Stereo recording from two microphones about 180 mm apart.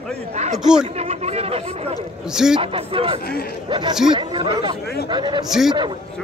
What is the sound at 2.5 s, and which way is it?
Speech, 30° right (ahead or behind).